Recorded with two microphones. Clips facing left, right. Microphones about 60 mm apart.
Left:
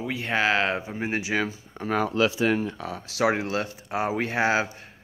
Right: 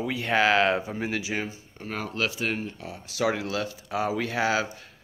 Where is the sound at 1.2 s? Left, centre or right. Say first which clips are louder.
Left 4 dB; left.